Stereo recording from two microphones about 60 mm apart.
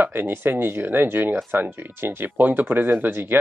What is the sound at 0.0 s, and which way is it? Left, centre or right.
Speech, right.